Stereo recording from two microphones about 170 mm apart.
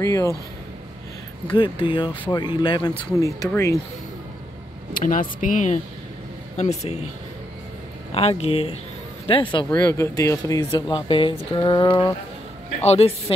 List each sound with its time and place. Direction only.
0.0 s speech: 20° left (ahead or behind)
1.5 s speech: 30° left (ahead or behind)
4.9 s speech: 50° left (ahead or behind)
8.1 s speech: 35° left (ahead or behind)
9.8 s speech: 15° left (ahead or behind); by 13.1 s 35° left (ahead or behind)